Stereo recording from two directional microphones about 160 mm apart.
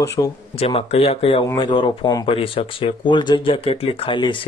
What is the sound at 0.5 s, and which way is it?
Speech, 40° left (ahead or behind).